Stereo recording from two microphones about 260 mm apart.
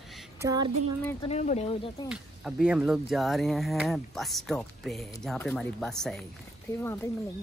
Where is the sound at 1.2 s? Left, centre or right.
Left.